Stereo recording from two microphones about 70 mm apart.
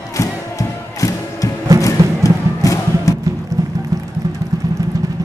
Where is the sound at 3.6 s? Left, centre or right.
Right.